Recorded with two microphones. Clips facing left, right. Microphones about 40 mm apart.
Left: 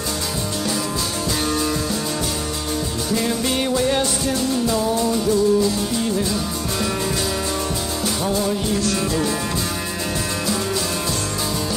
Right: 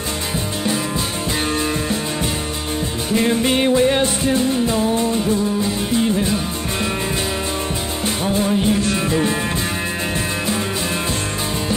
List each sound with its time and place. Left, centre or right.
3.1 s music: right
8.2 s music: right